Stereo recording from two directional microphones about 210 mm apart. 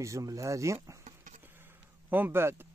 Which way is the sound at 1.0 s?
35° right (ahead or behind).